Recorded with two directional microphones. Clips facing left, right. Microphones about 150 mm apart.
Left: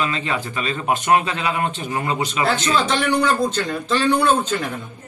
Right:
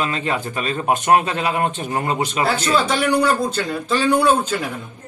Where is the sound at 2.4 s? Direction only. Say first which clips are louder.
Right 1 dB; 5° right (ahead or behind).